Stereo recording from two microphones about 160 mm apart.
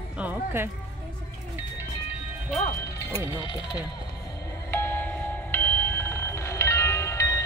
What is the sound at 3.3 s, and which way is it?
Speech, 30° left (ahead or behind).